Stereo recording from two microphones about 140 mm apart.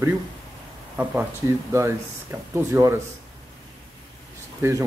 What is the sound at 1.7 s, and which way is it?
Speech, 20° right (ahead or behind).